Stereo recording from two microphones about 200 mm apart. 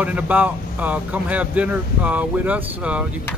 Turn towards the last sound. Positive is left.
turn(degrees=-5)  # may be behind; listen again after turning